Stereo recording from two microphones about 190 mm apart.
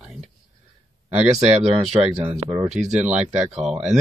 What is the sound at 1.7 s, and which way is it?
Speech, 5° right (ahead or behind).